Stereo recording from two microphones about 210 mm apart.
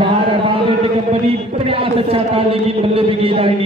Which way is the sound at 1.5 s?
25° right (ahead or behind).